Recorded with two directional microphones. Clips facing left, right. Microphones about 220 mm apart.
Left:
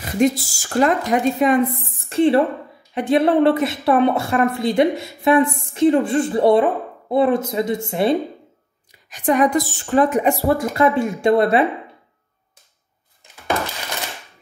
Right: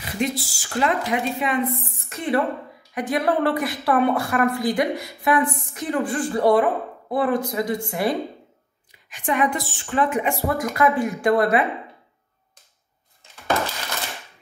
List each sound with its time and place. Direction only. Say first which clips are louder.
0.0 s speech: left 8 dB; 45° left (ahead or behind)
2.0 s a woman's voice: left 8 dB; 30° left (ahead or behind)
9.1 s a woman's voice: left 6 dB; 40° left (ahead or behind); by 11.6 s 25° left (ahead or behind)